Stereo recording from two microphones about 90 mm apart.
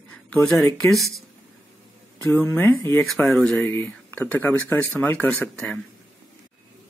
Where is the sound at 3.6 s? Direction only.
25° left (ahead or behind).